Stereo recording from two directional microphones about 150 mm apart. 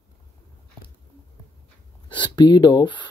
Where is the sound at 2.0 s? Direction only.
30° left (ahead or behind).